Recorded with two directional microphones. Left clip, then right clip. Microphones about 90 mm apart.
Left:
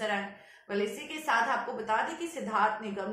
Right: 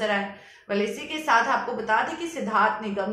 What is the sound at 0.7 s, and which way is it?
A woman's voice, 25° right (ahead or behind).